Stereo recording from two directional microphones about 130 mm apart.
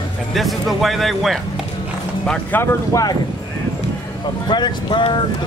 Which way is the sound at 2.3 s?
15° left (ahead or behind).